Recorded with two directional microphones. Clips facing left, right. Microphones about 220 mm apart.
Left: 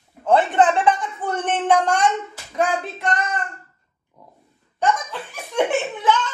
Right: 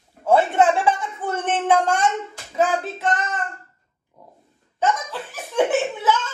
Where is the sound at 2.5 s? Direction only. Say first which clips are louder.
Right 1 dB; 5° right (ahead or behind).